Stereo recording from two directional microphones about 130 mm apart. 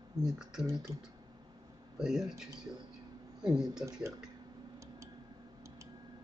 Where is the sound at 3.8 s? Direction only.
25° right (ahead or behind).